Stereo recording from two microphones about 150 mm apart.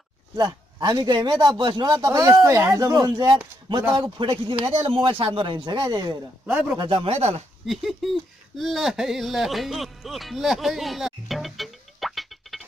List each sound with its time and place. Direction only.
0.4 s a man's voice: 25° right (ahead or behind)
2.1 s a man's voice: 20° right (ahead or behind)
6.4 s speech: 10° right (ahead or behind)
6.8 s speech: 35° right (ahead or behind)
7.6 s speech: centre (ahead or behind)